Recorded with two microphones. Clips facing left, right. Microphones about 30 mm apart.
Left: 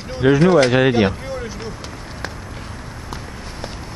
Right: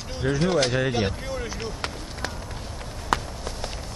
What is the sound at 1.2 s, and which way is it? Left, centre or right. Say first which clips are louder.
Vehicle: left 3 dB; centre.